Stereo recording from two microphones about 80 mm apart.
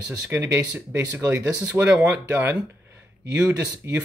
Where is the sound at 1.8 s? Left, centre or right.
Right.